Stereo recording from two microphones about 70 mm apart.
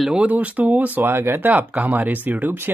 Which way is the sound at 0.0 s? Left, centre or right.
Centre.